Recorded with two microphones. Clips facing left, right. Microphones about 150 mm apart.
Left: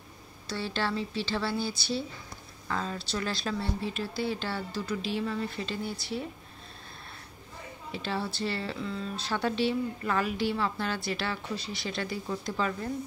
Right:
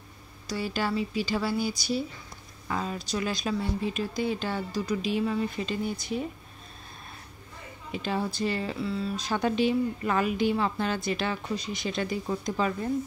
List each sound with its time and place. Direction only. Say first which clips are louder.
0.5 s speech: right 2 dB; 10° right (ahead or behind)
7.9 s speech: right 3 dB; 15° right (ahead or behind)